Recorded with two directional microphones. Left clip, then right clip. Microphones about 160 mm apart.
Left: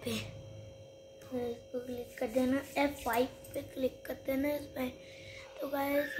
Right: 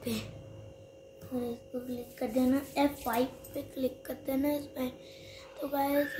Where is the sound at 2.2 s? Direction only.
15° right (ahead or behind).